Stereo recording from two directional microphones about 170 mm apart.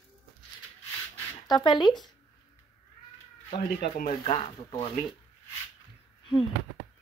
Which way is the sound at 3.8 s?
55° left (ahead or behind).